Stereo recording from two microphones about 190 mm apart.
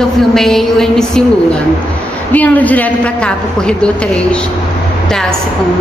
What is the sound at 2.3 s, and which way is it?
A woman's voice, 10° left (ahead or behind).